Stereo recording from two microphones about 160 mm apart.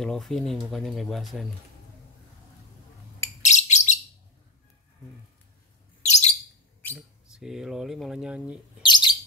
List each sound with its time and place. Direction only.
0.0 s speech: 5° left (ahead or behind)
3.4 s bird: 45° left (ahead or behind)
6.0 s bird: 45° left (ahead or behind)
7.0 s speech: 5° right (ahead or behind)
8.8 s bird: 30° left (ahead or behind)